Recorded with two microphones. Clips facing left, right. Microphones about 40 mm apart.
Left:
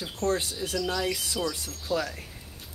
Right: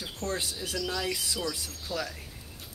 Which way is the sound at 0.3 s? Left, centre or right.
Centre.